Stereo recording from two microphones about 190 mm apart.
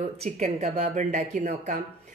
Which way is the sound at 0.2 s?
35° right (ahead or behind).